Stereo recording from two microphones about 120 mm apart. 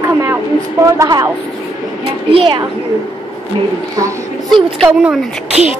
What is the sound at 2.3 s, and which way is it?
Speech, 45° right (ahead or behind).